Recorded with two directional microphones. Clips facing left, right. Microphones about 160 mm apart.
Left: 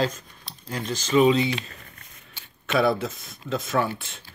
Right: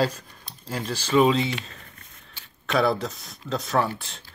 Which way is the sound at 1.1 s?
Centre (ahead or behind).